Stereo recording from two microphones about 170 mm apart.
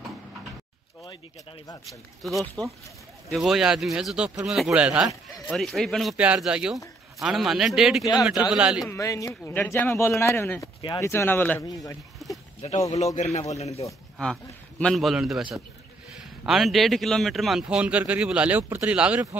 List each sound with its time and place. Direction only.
1.9 s speech: centre (ahead or behind)
8.8 s a man's voice: 20° left (ahead or behind)
12.9 s speech: 45° left (ahead or behind)
14.1 s speech: centre (ahead or behind)
16.4 s speech: centre (ahead or behind)